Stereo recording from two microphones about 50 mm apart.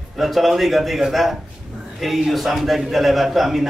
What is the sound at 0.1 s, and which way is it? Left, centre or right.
A man's voice, centre.